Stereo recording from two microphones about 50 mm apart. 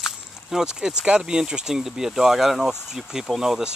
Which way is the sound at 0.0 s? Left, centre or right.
Centre.